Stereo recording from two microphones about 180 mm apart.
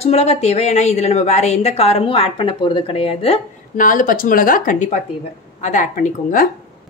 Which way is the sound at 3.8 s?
50° left (ahead or behind).